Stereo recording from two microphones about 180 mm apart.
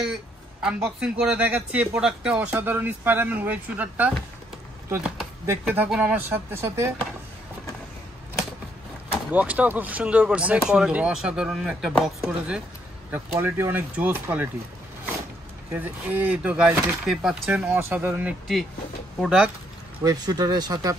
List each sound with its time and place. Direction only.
0.6 s a man's voice: 5° right (ahead or behind)
9.3 s a man's voice: 10° right (ahead or behind)
15.7 s a man's voice: 10° right (ahead or behind)
20.0 s speech: 20° right (ahead or behind)